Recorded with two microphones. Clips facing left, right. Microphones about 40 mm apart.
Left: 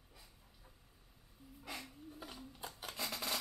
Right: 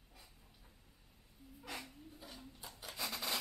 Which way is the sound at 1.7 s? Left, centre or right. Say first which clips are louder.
Even; centre.